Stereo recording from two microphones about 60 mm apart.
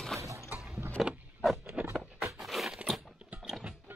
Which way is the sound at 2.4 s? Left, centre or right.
Centre.